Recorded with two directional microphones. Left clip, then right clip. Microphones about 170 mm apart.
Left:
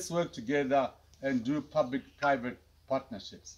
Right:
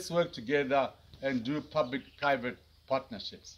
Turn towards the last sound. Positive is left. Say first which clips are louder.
# right 3 dB
turn(degrees=15)  # may be behind; listen again after turning